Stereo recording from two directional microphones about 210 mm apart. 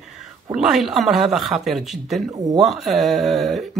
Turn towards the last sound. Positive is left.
turn(degrees=0)  # may be behind; listen again after turning